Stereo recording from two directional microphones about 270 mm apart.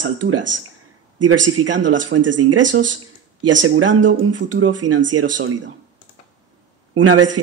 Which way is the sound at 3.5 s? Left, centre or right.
Right.